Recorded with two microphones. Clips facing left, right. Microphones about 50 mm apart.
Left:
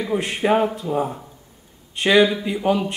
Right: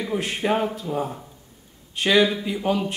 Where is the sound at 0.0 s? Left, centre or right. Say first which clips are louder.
Left 3 dB; centre.